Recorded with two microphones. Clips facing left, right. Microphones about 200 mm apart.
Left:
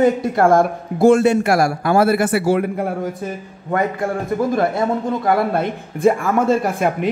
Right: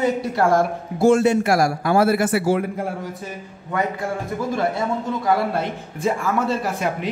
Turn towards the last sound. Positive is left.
turn(degrees=55)  # may be behind; listen again after turning